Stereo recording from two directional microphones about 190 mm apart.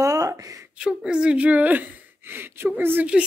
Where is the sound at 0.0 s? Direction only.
20° right (ahead or behind).